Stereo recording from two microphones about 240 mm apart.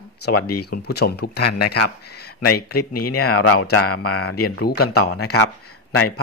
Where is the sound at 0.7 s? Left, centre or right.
Left.